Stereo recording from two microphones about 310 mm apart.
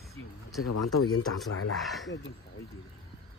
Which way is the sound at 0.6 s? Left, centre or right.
Left.